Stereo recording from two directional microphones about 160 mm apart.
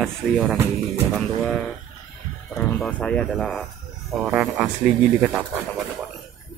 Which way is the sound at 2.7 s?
10° left (ahead or behind).